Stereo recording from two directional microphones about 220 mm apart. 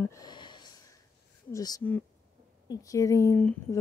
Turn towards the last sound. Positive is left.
turn(degrees=10)  # may be behind; listen again after turning